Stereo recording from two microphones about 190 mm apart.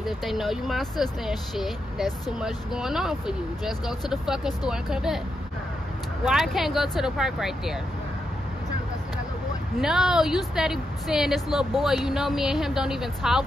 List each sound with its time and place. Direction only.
0.0 s speech: centre (ahead or behind)
6.2 s speech: centre (ahead or behind)
9.8 s speech: centre (ahead or behind)